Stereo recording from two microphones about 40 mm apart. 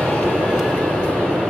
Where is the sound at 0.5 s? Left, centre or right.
Centre.